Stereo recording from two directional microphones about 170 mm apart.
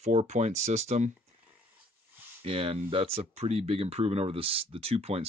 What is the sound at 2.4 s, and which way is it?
Speech, 35° right (ahead or behind).